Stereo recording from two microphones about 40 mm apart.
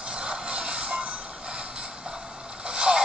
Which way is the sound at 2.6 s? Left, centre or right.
Right.